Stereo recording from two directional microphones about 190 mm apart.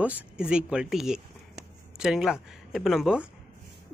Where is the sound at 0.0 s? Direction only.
5° right (ahead or behind).